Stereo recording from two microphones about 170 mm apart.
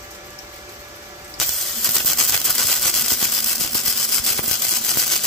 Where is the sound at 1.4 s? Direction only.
Centre (ahead or behind).